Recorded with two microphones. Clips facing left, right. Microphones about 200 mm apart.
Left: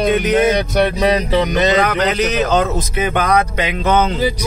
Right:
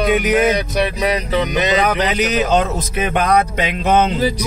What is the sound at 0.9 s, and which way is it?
Speech, 35° left (ahead or behind).